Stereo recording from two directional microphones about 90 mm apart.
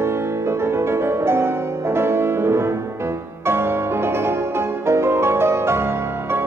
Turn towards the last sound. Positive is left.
turn(degrees=-25)  # may be behind; listen again after turning